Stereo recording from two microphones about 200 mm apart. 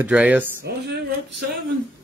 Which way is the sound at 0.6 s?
55° right (ahead or behind).